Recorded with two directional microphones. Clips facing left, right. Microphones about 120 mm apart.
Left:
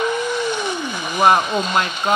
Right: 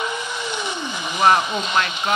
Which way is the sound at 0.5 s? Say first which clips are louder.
Left 4 dB; 50° left (ahead or behind).